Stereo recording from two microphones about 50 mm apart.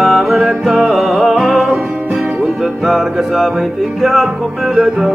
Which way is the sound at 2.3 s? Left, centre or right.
Centre.